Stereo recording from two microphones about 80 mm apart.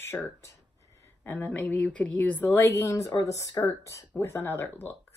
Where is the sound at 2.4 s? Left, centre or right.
Left.